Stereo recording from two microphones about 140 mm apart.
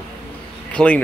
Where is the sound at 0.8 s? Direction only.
5° left (ahead or behind).